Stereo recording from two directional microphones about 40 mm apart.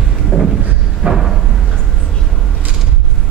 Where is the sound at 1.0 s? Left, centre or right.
Right.